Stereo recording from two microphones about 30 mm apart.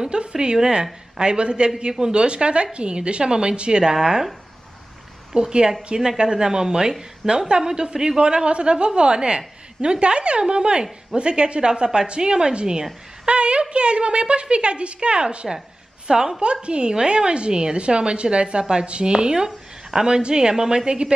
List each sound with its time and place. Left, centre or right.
0.0 s a woman's voice: right
3.8 s a woman's voice: right
5.5 s a woman's voice: right
13.2 s a woman's voice: right
15.4 s a woman's voice: centre
16.1 s a woman's voice: right
19.1 s a woman's voice: right